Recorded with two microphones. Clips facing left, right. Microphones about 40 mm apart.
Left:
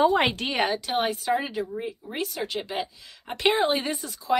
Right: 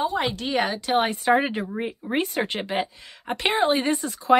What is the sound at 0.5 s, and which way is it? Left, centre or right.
Speech, centre.